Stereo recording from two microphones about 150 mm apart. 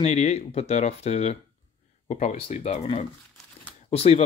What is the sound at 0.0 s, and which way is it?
Speech, 45° left (ahead or behind).